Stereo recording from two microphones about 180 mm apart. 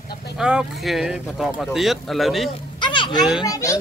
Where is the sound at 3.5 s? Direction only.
15° left (ahead or behind).